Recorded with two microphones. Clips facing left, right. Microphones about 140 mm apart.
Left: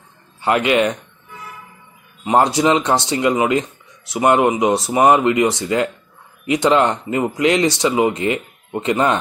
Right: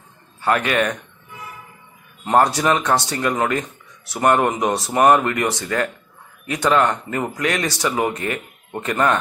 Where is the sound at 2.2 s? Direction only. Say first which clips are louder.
Left 2 dB; 15° left (ahead or behind).